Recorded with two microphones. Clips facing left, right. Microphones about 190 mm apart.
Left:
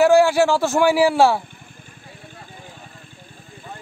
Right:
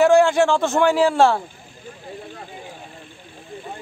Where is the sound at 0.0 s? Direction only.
5° left (ahead or behind).